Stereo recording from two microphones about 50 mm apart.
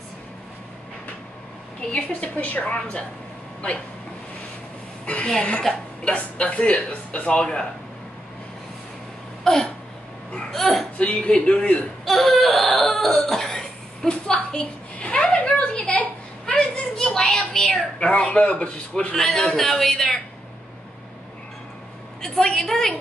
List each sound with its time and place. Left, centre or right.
1.8 s speech: left
5.0 s a woman's voice: left
5.6 s speech: centre
6.1 s speech: left
9.4 s a sound: centre
11.0 s speech: left
12.0 s cough: centre
14.5 s a sound: left
16.4 s children playing: left
17.0 s a sound: centre
17.6 s speech: centre
19.1 s a woman's voice: centre
22.2 s a woman's voice: centre